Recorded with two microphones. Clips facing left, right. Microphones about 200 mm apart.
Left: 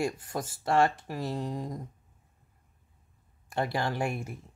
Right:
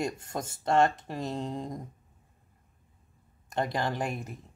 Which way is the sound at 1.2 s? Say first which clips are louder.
Even; 20° right (ahead or behind).